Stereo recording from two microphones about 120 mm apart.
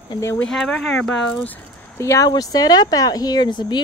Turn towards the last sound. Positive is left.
turn(degrees=40)  # may be behind; listen again after turning